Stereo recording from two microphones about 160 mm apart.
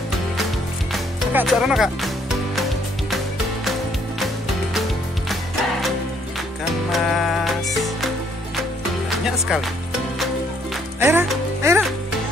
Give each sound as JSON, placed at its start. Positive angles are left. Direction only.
{"t": 1.4, "sound": "speech", "side_deg": 0}
{"t": 5.3, "sound": "music", "side_deg": 0}
{"t": 9.2, "sound": "speech", "side_deg": -5}
{"t": 11.0, "sound": "music", "side_deg": -15}